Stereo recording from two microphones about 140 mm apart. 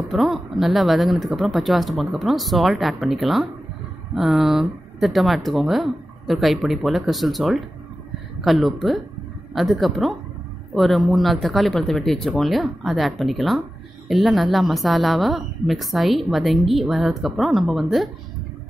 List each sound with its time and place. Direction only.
0.0 s a woman's voice: centre (ahead or behind)